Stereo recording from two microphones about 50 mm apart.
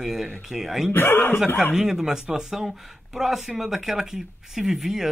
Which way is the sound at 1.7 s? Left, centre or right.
Centre.